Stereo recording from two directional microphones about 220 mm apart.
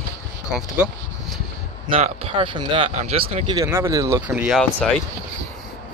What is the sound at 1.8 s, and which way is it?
Speech, 25° right (ahead or behind).